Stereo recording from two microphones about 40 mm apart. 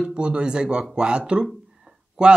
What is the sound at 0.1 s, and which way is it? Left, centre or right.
Speech, right.